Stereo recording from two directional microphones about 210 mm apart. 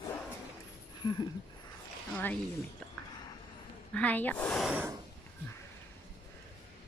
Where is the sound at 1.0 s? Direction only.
20° left (ahead or behind).